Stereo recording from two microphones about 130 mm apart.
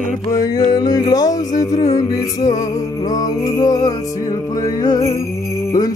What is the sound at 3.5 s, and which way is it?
Music, 30° left (ahead or behind).